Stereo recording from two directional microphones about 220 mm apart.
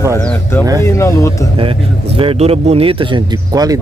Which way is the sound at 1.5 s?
25° right (ahead or behind).